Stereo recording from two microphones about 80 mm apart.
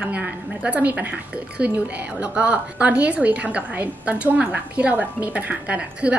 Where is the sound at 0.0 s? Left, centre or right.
Centre.